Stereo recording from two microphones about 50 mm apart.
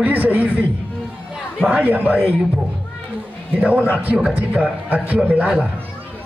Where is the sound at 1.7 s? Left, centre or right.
Right.